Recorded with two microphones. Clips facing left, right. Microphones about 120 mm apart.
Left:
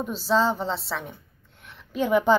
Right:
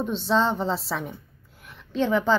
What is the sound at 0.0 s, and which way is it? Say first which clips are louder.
A woman's voice: even; 5° left (ahead or behind).